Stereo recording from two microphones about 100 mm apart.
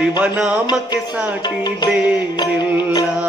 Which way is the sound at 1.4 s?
45° left (ahead or behind).